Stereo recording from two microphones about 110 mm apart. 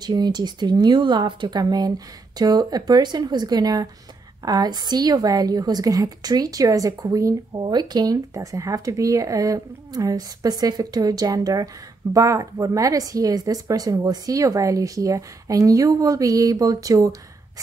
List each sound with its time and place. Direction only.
0.0 s speech: 40° right (ahead or behind)
7.5 s speech: 40° right (ahead or behind)